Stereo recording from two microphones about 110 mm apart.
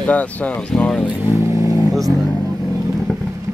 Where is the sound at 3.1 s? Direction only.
10° left (ahead or behind).